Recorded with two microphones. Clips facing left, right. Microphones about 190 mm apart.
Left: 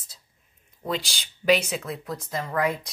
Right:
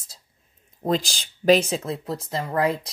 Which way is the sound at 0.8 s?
35° right (ahead or behind).